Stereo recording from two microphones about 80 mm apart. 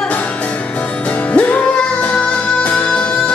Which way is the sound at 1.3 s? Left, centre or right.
Centre.